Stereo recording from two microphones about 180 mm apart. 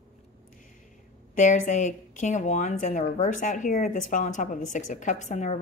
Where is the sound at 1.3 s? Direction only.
45° left (ahead or behind).